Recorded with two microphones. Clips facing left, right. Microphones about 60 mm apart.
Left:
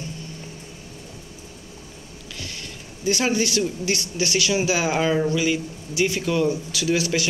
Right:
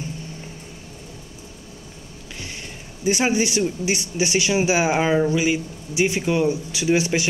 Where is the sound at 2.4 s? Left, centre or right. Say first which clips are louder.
Right 1 dB; right.